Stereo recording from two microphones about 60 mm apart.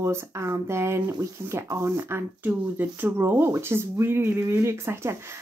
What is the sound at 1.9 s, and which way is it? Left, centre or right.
Speech, right.